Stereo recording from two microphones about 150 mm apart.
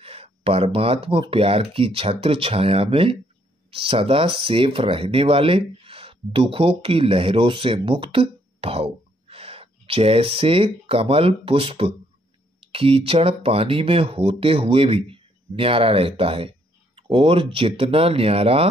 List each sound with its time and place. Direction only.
0.0 s speech: 40° right (ahead or behind)